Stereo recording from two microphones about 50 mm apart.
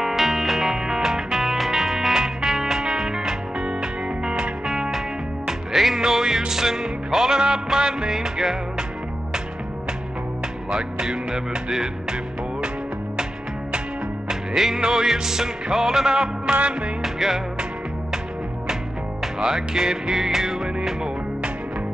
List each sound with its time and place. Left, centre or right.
0.0 s music: centre
10.7 s music: centre
19.2 s music: centre